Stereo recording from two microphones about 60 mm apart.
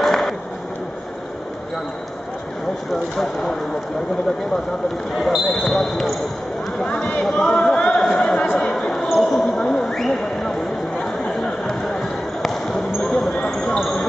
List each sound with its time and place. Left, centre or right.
0.0 s a sound: centre
2.9 s speech: centre
5.1 s speech: centre
6.8 s speech: centre
7.3 s chatter: centre
8.5 s basketball bounce: centre